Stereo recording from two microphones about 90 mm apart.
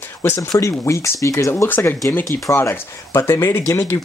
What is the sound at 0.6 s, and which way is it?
Speech, 35° left (ahead or behind).